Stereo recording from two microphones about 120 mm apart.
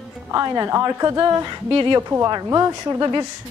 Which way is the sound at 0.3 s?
25° right (ahead or behind).